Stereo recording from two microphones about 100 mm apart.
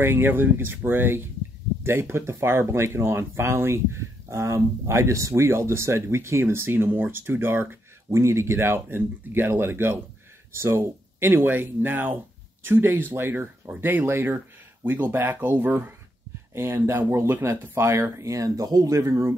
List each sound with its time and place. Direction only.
0.0 s speech: 20° right (ahead or behind)